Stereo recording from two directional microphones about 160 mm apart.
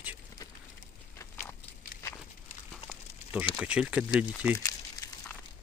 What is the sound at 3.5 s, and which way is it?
Speech, 5° right (ahead or behind).